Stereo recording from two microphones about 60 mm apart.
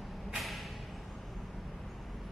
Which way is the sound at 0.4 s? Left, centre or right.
Centre.